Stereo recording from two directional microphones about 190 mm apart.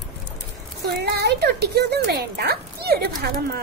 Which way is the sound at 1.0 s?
60° right (ahead or behind).